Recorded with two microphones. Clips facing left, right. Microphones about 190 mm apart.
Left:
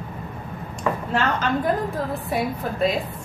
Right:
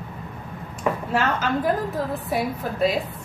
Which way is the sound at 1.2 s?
5° right (ahead or behind).